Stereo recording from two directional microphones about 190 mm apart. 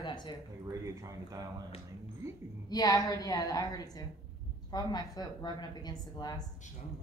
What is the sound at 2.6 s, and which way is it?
A woman's voice, 20° left (ahead or behind).